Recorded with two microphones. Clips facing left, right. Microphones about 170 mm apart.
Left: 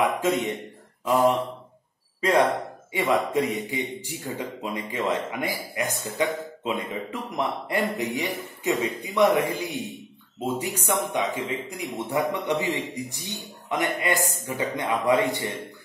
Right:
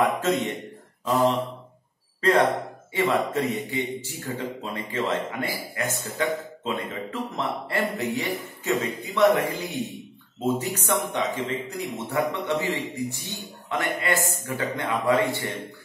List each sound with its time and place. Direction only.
0.2 s a man's voice: 10° left (ahead or behind)
2.9 s a man's voice: 15° left (ahead or behind)